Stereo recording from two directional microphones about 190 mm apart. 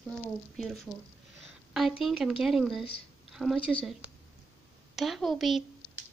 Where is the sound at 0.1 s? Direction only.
Centre (ahead or behind).